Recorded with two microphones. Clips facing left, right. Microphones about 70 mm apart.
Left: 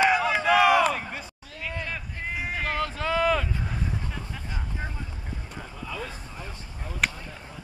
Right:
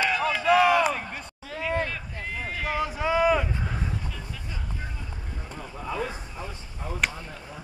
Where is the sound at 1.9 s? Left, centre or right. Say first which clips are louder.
Left 1 dB; centre.